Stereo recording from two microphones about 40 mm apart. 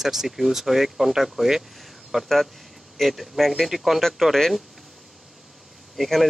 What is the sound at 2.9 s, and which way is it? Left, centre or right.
Speech, centre.